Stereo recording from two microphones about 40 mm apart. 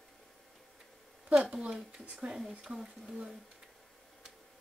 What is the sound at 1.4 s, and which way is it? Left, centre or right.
Speech, centre.